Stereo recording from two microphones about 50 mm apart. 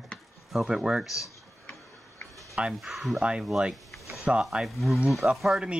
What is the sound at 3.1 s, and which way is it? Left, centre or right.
Speech, centre.